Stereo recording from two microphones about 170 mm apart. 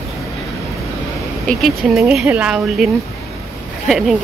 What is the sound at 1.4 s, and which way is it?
Speech, centre (ahead or behind).